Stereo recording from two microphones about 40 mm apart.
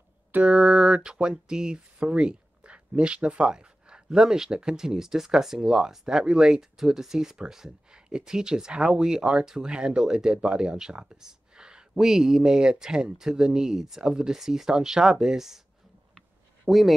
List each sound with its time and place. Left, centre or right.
0.3 s speech: right
0.6 s speech: right
16.2 s a sound: centre